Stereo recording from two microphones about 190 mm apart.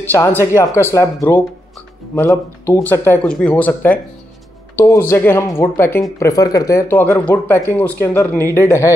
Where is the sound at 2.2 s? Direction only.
15° left (ahead or behind).